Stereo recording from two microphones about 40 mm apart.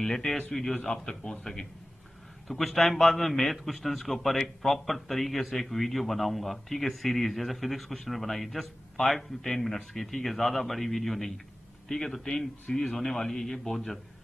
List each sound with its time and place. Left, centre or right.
0.3 s a man's voice: centre
0.8 s a man's voice: centre